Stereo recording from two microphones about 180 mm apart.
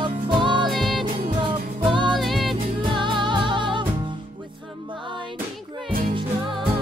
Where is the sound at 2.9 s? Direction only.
25° right (ahead or behind).